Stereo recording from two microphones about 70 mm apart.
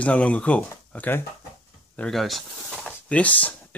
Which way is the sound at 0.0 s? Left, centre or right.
Centre.